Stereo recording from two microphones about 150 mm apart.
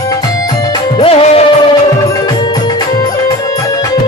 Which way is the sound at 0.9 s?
40° left (ahead or behind).